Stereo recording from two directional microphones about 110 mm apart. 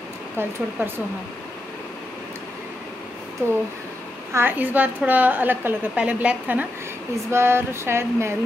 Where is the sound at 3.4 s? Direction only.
20° right (ahead or behind).